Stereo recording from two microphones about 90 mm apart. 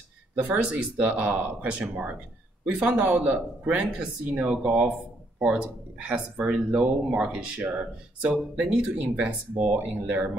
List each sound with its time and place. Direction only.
0.4 s speech: 15° right (ahead or behind)